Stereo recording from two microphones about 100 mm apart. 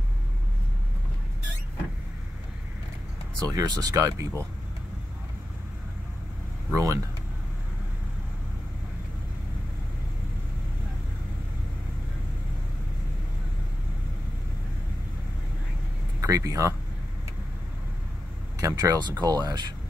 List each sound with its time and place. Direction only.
3.4 s speech: 40° right (ahead or behind)
6.7 s speech: 35° right (ahead or behind)
16.2 s speech: 35° right (ahead or behind)
18.6 s speech: 35° right (ahead or behind)